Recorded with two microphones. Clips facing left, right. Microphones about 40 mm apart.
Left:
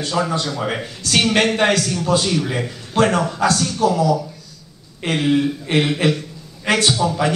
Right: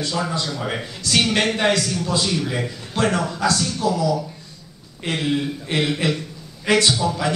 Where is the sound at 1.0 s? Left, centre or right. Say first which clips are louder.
Left 2 dB; left.